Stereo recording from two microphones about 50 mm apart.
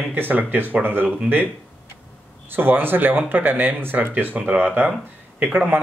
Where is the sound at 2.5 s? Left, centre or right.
Right.